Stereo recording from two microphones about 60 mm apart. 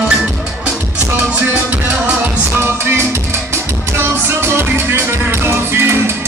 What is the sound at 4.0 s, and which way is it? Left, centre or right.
Music, right.